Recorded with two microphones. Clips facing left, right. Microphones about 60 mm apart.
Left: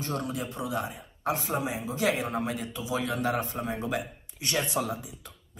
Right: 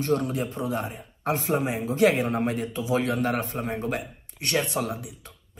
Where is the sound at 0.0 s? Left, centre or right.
Right.